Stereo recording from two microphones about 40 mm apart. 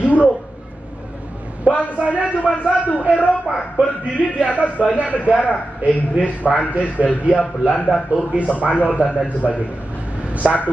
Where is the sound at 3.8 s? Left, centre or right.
Right.